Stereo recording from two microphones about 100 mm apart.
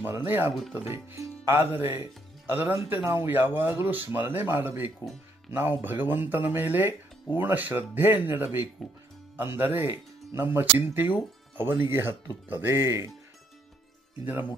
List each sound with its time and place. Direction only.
0.0 s speech: 25° right (ahead or behind)
8.8 s speech: 5° left (ahead or behind)
9.4 s speech: 25° right (ahead or behind)
14.2 s speech: 15° right (ahead or behind)